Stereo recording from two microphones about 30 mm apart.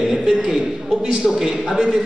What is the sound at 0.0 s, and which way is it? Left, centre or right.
Chuckle, right.